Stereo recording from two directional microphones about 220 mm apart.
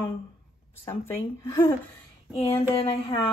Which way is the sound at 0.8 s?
10° left (ahead or behind).